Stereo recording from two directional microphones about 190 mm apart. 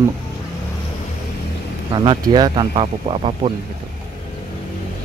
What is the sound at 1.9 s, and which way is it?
Speech, 25° right (ahead or behind).